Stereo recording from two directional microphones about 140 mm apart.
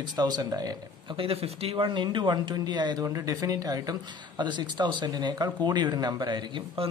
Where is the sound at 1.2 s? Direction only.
45° right (ahead or behind).